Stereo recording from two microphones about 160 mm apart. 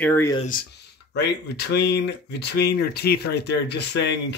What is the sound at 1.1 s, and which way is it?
Speech, 90° left.